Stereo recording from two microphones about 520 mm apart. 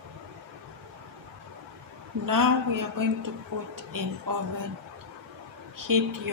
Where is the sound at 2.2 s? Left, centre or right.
Right.